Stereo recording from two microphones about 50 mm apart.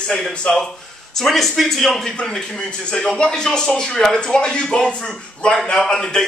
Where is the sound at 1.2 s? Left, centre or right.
Centre.